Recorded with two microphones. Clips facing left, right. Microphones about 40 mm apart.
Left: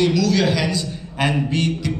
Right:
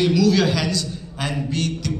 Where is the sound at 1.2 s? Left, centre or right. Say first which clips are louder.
Left 5 dB; left.